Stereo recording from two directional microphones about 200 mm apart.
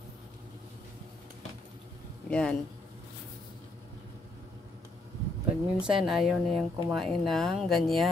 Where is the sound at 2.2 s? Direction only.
5° left (ahead or behind).